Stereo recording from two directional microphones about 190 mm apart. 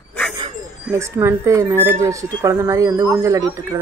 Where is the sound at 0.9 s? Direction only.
15° right (ahead or behind).